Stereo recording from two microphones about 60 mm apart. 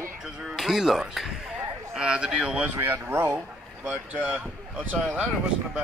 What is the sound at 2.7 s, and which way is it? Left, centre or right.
Speech, right.